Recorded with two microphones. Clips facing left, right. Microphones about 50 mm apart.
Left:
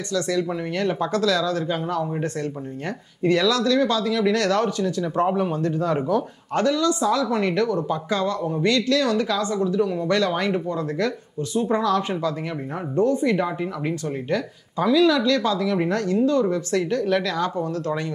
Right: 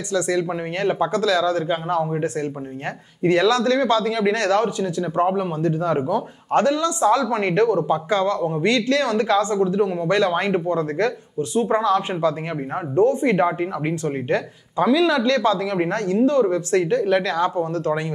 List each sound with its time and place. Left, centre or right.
0.1 s speech: right
1.1 s speech: centre
1.4 s speech: right
2.0 s speech: centre
3.2 s speech: right
4.5 s speech: centre
6.5 s speech: right
11.6 s speech: right
14.8 s speech: right
17.6 s speech: right